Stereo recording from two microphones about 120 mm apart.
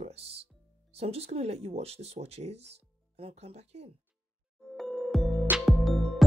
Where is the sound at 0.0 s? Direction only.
60° right (ahead or behind).